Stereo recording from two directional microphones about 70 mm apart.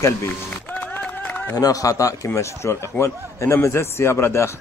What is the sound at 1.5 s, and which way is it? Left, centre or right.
A man's voice, left.